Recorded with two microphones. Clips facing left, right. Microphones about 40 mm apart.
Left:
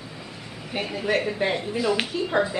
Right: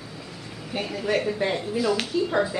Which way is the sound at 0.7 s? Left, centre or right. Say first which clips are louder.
Left 1 dB; centre.